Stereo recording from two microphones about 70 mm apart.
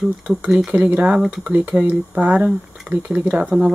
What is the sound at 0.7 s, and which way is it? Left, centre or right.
Speech, right.